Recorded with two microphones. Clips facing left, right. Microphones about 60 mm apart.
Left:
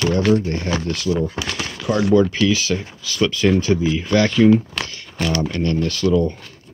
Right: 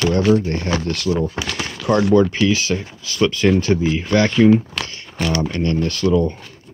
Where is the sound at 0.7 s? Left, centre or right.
Right.